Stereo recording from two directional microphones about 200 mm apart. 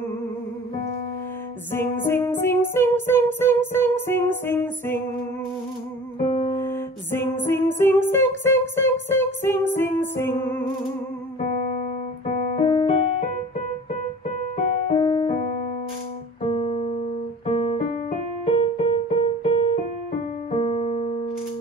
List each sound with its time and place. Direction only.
1.7 s music: 10° left (ahead or behind)
6.5 s music: 10° left (ahead or behind)
12.4 s music: 25° left (ahead or behind)
14.9 s music: 25° left (ahead or behind)
16.4 s keyboard: 25° left (ahead or behind)
17.5 s music: 25° left (ahead or behind)
18.4 s keyboard: 30° left (ahead or behind)
20.5 s music: 30° left (ahead or behind)